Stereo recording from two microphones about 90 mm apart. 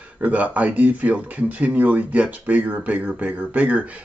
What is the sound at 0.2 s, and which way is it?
Speech, 15° right (ahead or behind).